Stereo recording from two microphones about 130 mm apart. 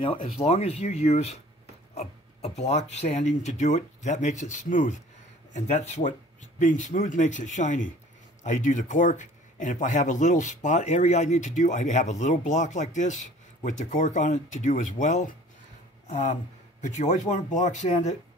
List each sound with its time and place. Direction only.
0.5 s speech: 55° left (ahead or behind); by 4.9 s 75° left (ahead or behind)
5.5 s speech: 60° left (ahead or behind)